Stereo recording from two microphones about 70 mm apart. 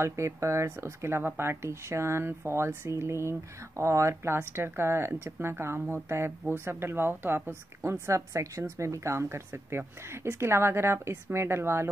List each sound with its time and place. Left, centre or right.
0.0 s speech: right